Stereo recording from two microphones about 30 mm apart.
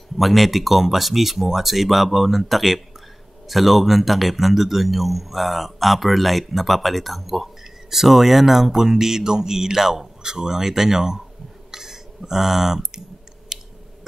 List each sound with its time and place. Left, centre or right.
0.2 s speech: centre
10.2 s speech: right
11.7 s a sound: centre